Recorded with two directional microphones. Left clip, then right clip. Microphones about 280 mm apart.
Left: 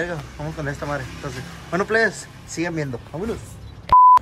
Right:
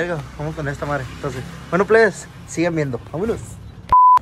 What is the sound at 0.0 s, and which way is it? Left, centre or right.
Speech, centre.